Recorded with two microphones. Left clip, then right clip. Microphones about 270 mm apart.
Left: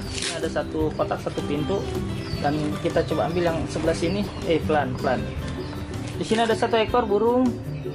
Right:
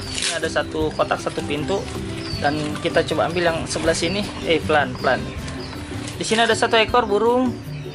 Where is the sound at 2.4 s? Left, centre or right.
Centre.